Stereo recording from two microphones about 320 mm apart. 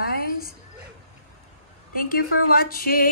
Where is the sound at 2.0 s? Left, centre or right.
Left.